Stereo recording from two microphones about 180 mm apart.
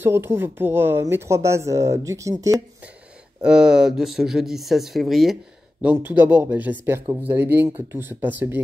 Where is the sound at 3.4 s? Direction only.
5° right (ahead or behind).